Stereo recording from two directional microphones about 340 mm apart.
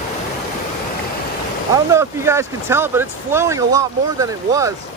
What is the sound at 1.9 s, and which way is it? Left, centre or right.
Speech, centre.